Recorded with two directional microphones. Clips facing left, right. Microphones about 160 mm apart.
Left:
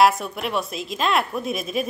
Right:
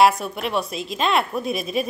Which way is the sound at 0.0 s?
Centre (ahead or behind).